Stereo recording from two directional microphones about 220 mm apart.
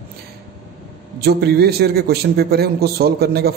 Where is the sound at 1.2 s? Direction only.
45° right (ahead or behind).